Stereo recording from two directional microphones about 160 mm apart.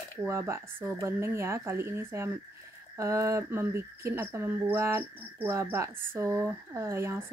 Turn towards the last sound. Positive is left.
turn(degrees=-15)  # may be behind; listen again after turning